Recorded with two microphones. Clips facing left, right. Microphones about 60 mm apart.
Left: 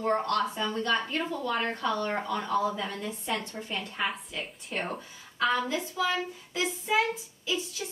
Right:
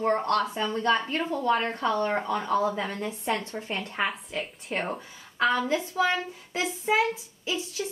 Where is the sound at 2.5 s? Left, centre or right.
Right.